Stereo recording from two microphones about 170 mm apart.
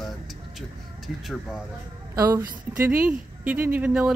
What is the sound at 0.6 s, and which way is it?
Speech, centre (ahead or behind).